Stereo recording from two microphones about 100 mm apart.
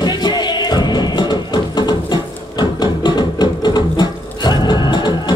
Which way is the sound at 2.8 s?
50° left (ahead or behind).